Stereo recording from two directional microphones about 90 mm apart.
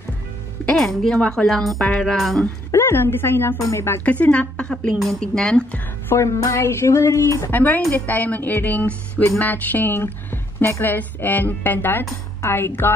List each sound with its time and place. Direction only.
0.7 s a woman's voice: 5° left (ahead or behind)
2.4 s a woman's voice: 25° left (ahead or behind)
4.0 s a woman's voice: 15° left (ahead or behind)
6.0 s speech: 35° left (ahead or behind)
7.5 s a woman's voice: 20° left (ahead or behind)